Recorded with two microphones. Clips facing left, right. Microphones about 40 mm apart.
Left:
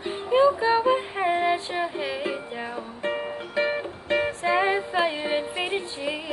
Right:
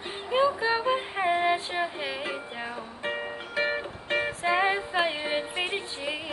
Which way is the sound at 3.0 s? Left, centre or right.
Centre.